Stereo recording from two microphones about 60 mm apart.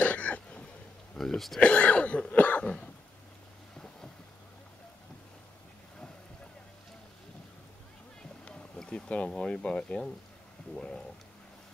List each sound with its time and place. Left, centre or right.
0.0 s throat clearing: left
1.1 s speech: centre
1.6 s cough: left
8.7 s speech: centre